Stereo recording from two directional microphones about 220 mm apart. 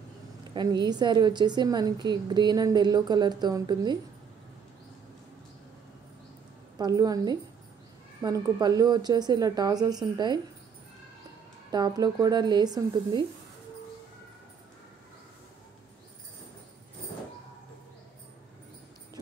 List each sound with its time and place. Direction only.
0.4 s a woman's voice: 20° right (ahead or behind)
6.8 s speech: 15° right (ahead or behind)
11.7 s speech: 15° right (ahead or behind)